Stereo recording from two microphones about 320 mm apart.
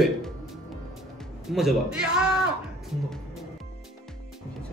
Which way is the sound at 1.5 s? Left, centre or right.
Centre.